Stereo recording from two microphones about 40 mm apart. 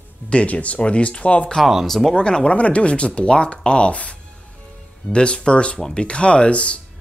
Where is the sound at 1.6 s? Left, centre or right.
Centre.